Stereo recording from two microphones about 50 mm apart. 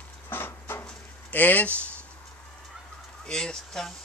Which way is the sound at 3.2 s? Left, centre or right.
Centre.